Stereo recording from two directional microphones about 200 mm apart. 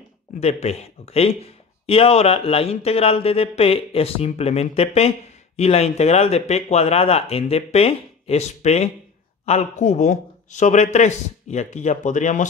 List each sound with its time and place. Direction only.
0.4 s speech: 30° left (ahead or behind)